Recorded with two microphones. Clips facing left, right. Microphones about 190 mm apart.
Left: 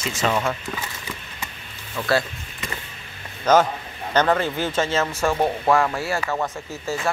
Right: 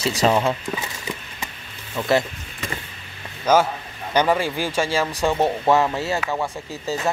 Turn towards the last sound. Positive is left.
turn(degrees=-15)  # may be behind; listen again after turning